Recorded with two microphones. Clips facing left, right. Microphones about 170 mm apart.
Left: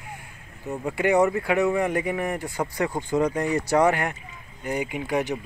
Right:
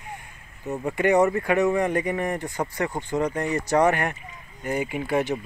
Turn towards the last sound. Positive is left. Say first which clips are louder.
# right 1 dB
turn(degrees=15)  # may be behind; listen again after turning